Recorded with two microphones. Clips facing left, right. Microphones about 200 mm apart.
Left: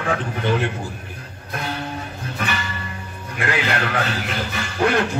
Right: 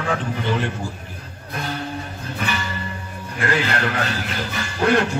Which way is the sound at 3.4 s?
55° left (ahead or behind).